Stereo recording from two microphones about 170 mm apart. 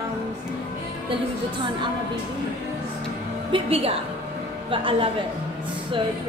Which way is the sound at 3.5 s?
35° right (ahead or behind).